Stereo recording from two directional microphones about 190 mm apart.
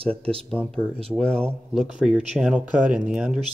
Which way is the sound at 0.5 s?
5° left (ahead or behind).